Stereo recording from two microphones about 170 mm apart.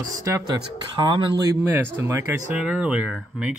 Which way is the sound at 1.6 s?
10° right (ahead or behind).